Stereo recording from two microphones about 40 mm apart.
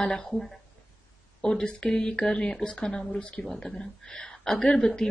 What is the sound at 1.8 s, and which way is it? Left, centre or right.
Speech, centre.